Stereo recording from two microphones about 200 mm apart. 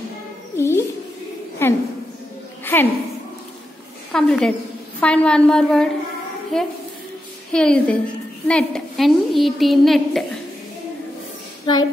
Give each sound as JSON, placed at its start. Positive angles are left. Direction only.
{"t": 0.6, "sound": "music", "side_deg": 15}
{"t": 1.6, "sound": "a sound", "side_deg": 10}
{"t": 4.1, "sound": "a woman's voice", "side_deg": 5}
{"t": 7.5, "sound": "a woman's voice", "side_deg": 5}
{"t": 11.6, "sound": "a woman's voice", "side_deg": 20}